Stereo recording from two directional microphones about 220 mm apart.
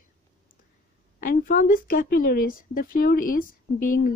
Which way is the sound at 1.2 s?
40° left (ahead or behind).